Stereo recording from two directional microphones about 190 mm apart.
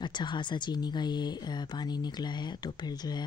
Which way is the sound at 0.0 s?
25° left (ahead or behind).